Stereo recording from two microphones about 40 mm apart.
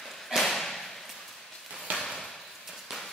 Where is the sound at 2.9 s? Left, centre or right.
Centre.